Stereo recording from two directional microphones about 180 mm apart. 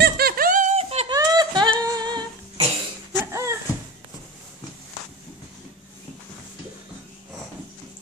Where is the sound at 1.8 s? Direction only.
25° right (ahead or behind).